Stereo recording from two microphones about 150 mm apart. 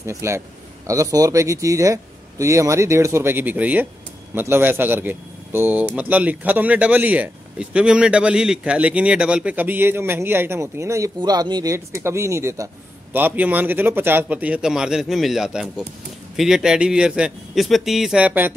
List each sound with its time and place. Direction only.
0.0 s a man's voice: 20° right (ahead or behind)